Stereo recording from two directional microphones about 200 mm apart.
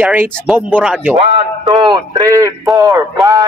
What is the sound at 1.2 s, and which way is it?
Speech, 30° right (ahead or behind).